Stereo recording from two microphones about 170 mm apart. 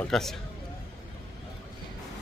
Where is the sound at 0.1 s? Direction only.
Centre (ahead or behind).